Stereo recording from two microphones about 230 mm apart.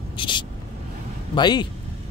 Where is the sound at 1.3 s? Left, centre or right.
Centre.